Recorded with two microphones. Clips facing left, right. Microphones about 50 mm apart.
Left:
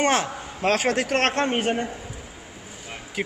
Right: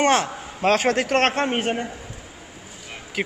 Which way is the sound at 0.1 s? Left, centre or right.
Centre.